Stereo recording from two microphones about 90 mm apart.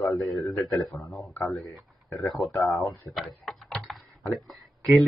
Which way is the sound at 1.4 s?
5° left (ahead or behind).